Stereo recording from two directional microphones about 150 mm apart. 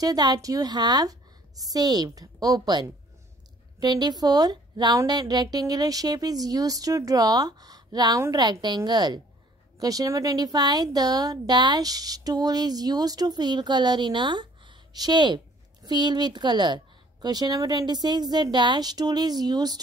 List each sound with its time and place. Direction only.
0.0 s speech: 25° right (ahead or behind)